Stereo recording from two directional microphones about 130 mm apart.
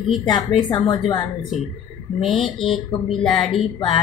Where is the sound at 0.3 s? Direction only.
35° left (ahead or behind).